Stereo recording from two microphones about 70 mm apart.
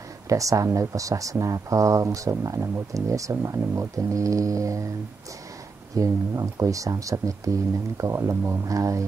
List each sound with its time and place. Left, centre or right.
0.3 s speech: right
2.9 s speech: right
5.9 s speech: right